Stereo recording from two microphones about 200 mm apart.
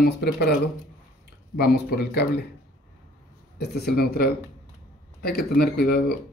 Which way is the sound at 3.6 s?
50° left (ahead or behind).